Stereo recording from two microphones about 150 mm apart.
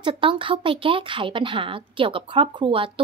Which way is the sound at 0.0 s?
35° right (ahead or behind).